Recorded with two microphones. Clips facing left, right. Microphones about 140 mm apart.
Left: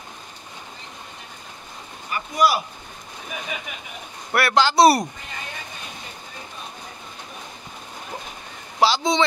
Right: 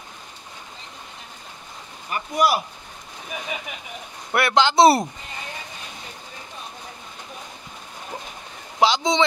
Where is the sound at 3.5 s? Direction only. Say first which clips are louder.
Right 1 dB; 25° right (ahead or behind).